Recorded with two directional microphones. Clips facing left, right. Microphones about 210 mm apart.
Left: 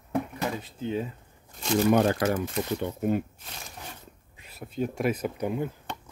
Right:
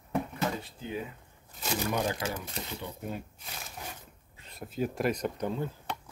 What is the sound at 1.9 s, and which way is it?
Speech, 60° left (ahead or behind).